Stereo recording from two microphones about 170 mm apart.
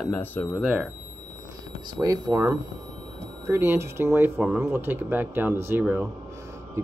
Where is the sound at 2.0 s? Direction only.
20° right (ahead or behind).